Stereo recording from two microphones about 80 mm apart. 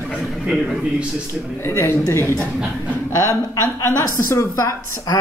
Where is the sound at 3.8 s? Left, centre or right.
Left.